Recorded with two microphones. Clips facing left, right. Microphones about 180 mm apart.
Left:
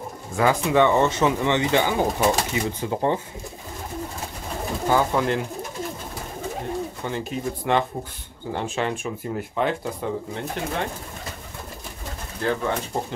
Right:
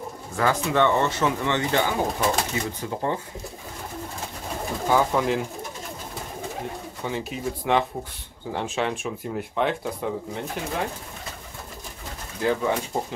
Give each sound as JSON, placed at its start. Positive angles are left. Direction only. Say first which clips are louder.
{"t": 0.4, "sound": "speech", "louder": "left 3 dB", "side_deg": 15}
{"t": 4.8, "sound": "speech", "louder": "even", "side_deg": 0}
{"t": 7.1, "sound": "speech", "louder": "right 2 dB", "side_deg": 0}
{"t": 12.4, "sound": "speech", "louder": "right 1 dB", "side_deg": -10}